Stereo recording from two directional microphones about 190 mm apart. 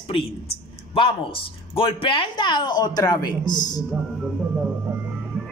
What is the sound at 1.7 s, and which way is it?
Speech, 30° left (ahead or behind).